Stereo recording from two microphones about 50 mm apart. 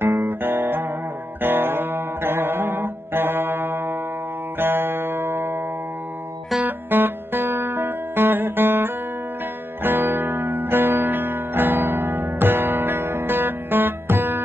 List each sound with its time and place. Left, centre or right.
0.0 s guitar: right
1.4 s music: right
6.6 s music: right